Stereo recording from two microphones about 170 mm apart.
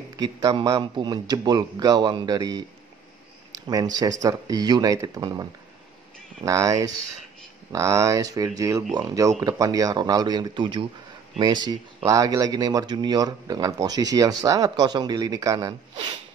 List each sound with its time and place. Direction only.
0.2 s speech: 25° right (ahead or behind)
3.5 s a sound: 20° right (ahead or behind)
3.9 s speech: 20° right (ahead or behind)